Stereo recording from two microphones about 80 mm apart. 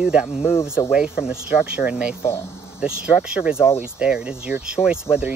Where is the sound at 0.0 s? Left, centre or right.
Centre.